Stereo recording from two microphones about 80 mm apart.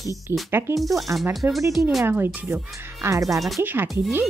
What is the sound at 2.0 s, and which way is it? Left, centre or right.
Speech, right.